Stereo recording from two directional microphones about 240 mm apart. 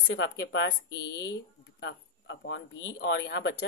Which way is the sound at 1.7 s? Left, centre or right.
Left.